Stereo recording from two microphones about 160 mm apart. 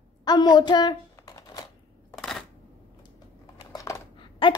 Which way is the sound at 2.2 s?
Centre (ahead or behind).